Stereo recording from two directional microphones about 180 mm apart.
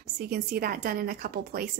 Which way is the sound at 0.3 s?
55° right (ahead or behind).